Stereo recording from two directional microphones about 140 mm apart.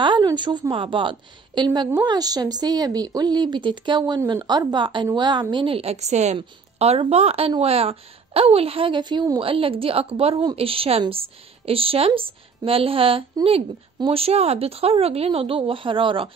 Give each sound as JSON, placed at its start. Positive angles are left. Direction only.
{"t": 0.0, "sound": "a woman's voice", "side_deg": -35}
{"t": 6.3, "sound": "a woman's voice", "side_deg": -45}